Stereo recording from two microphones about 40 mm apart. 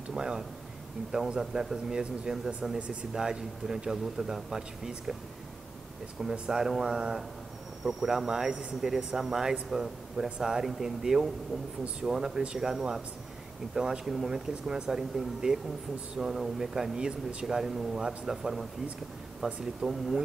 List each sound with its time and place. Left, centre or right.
0.1 s speech: centre
1.4 s speech: centre
6.4 s speech: centre
8.9 s speech: centre